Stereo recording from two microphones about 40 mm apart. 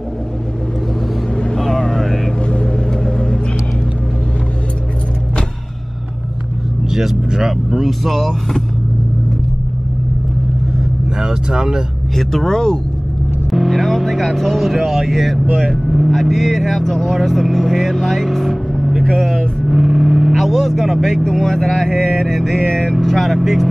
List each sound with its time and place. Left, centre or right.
1.6 s vehicle: centre
2.6 s vehicle: left
6.9 s speech: centre
11.1 s speech: centre
12.2 s vehicle: centre
13.5 s speech: centre
19.6 s vehicle: centre
21.3 s speech: centre
21.5 s vehicle: centre
22.7 s vehicle: centre
22.9 s speech: centre